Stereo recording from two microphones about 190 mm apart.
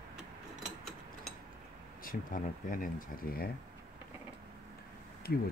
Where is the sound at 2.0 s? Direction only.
45° left (ahead or behind).